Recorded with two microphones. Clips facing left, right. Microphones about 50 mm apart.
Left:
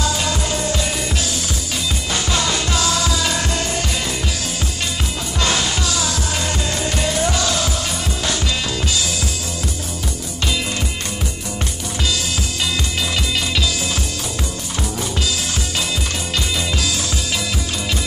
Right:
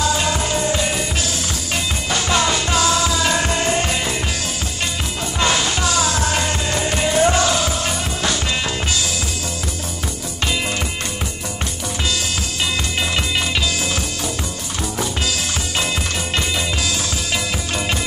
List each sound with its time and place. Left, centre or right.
0.0 s music: centre
2.3 s music: right
5.4 s music: right
6.4 s music: centre